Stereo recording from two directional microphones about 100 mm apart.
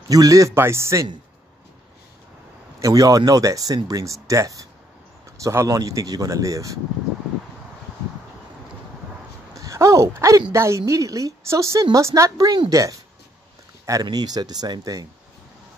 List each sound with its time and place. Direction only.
0.1 s speech: 35° right (ahead or behind)
2.8 s speech: 35° right (ahead or behind)
9.6 s a sound: 30° right (ahead or behind)
10.5 s a woman's voice: 30° right (ahead or behind)
14.0 s speech: 40° right (ahead or behind)